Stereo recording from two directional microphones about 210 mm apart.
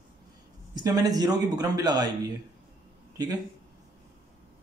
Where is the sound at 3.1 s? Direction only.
15° right (ahead or behind).